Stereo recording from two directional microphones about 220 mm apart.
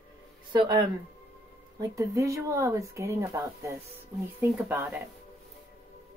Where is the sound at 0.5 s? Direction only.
20° right (ahead or behind).